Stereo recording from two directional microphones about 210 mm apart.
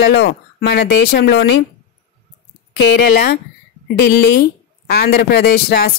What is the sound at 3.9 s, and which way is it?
A woman's voice, 50° left (ahead or behind).